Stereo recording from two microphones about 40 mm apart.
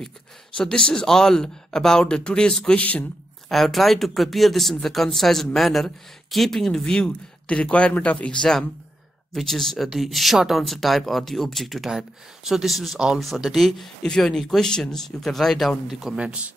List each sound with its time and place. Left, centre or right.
0.6 s speech: left
2.7 s speech: left
3.4 s speech: centre
6.8 s speech: left
8.3 s speech: centre
9.3 s speech: centre
14.0 s speech: centre
15.9 s speech: centre
16.2 s speech: right